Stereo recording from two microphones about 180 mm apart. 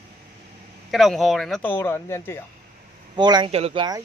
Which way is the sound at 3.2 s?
25° right (ahead or behind).